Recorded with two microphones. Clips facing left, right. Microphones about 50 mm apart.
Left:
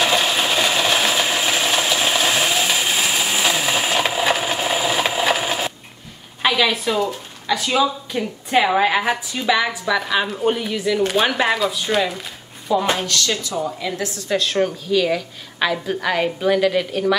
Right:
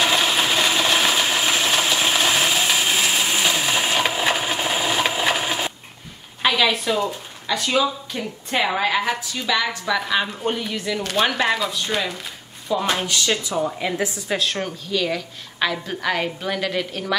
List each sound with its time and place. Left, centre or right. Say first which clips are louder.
0.0 s a sound: left 1 dB; centre
6.4 s a woman's voice: left 1 dB; centre
9.8 s a woman's voice: left 2 dB; centre
11.0 s a woman's voice: left 2 dB; centre
12.9 s a woman's voice: even; centre
14.3 s a woman's voice: left 8 dB; centre